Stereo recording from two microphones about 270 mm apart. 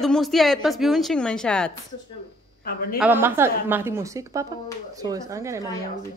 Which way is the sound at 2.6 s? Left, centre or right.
Left.